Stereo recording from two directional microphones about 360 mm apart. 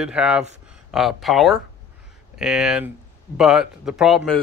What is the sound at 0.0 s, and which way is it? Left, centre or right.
Speech, centre.